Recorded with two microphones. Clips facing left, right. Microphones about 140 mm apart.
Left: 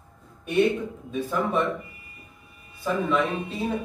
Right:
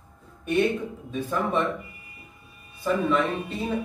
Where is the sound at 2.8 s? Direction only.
5° left (ahead or behind).